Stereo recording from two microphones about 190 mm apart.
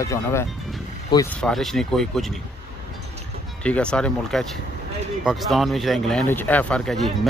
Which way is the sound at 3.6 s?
5° left (ahead or behind).